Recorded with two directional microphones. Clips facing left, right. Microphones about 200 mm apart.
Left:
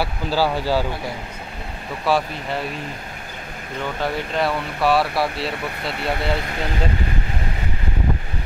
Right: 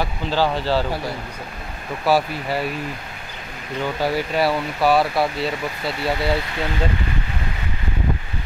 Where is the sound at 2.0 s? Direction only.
5° right (ahead or behind).